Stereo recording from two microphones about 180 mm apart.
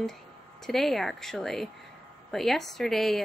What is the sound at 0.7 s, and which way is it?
Speech, centre (ahead or behind).